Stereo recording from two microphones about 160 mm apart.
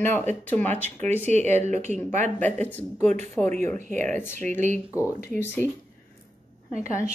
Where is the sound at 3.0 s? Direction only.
45° right (ahead or behind).